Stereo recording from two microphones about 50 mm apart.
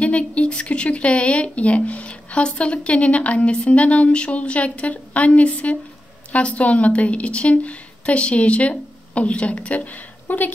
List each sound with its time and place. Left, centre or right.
0.0 s speech: left
10.2 s speech: left